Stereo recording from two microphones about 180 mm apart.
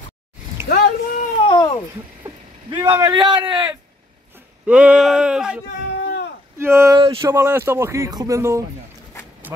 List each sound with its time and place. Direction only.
0.7 s a sound: 50° left (ahead or behind)
1.4 s babbling: 25° left (ahead or behind)
2.2 s speech: 20° right (ahead or behind)
4.6 s speech: 5° right (ahead or behind)
6.6 s speech: 15° right (ahead or behind)